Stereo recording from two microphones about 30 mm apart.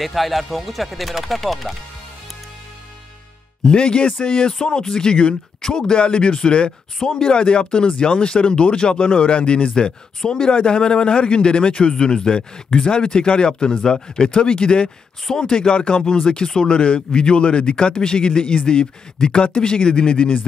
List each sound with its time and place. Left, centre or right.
0.0 s speech: centre
3.6 s a man's voice: left
10.2 s a man's voice: left
14.4 s a man's voice: left
15.3 s a man's voice: left
16.7 s a man's voice: left